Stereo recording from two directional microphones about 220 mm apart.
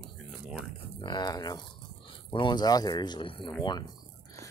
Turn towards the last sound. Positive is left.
turn(degrees=20)  # may be behind; listen again after turning